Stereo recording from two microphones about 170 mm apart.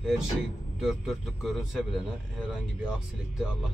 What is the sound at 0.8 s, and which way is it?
A man's voice, centre (ahead or behind).